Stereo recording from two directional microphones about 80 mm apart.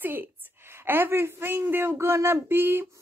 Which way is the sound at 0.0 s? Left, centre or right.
Right.